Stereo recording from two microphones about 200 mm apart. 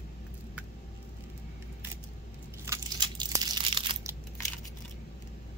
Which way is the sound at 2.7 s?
20° right (ahead or behind).